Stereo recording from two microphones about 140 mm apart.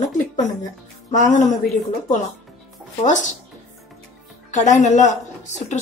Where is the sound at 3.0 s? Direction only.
60° left (ahead or behind).